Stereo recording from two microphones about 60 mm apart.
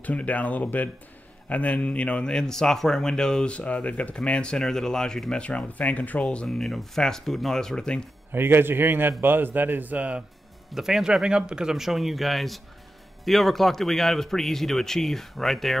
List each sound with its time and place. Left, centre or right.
0.0 s speech: left
3.5 s speech: left
6.4 s speech: centre
8.3 s speech: right
10.7 s speech: centre